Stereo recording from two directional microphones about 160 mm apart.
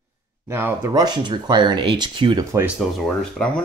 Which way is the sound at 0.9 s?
30° right (ahead or behind).